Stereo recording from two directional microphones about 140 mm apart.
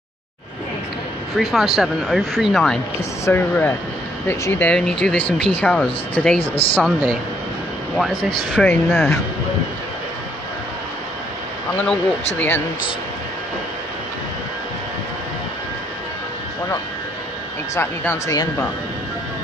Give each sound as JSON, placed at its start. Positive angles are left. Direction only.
{"t": 1.3, "sound": "speech", "side_deg": 0}
{"t": 3.3, "sound": "speech", "side_deg": 15}
{"t": 6.4, "sound": "a woman's voice", "side_deg": 40}
{"t": 6.8, "sound": "speech", "side_deg": -5}
{"t": 11.7, "sound": "speech", "side_deg": 10}
{"t": 17.7, "sound": "speech", "side_deg": 20}